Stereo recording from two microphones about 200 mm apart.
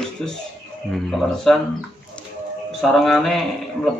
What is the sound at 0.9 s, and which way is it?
Speech, centre (ahead or behind).